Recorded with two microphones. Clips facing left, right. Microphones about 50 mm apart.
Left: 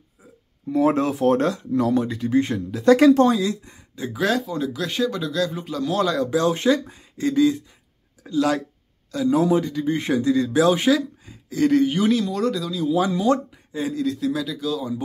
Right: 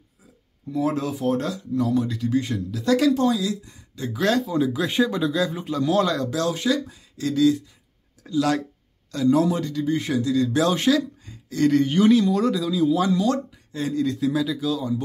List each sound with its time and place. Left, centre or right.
0.7 s speech: left
2.0 s speech: left
3.9 s speech: centre
4.2 s a man's voice: centre
6.2 s speech: left
6.5 s speech: left
8.4 s speech: centre
9.8 s speech: left
10.5 s speech: centre
12.9 s a man's voice: centre